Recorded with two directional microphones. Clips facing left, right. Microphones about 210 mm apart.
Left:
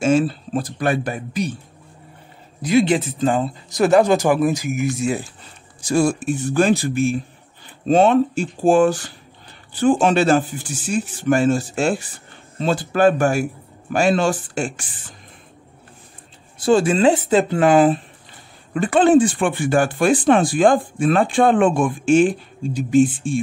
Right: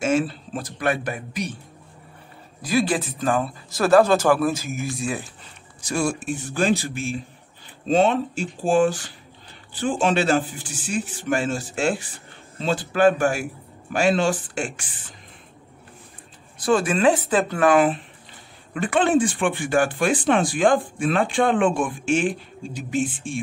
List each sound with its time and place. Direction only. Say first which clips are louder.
0.0 s speech: left 5 dB; 30° left (ahead or behind)
2.6 s speech: left 5 dB; 20° left (ahead or behind)
5.9 s speech: left 6 dB; 35° left (ahead or behind)
6.5 s speech: left 5 dB; 50° left (ahead or behind)
16.5 s speech: left 5 dB; 25° left (ahead or behind)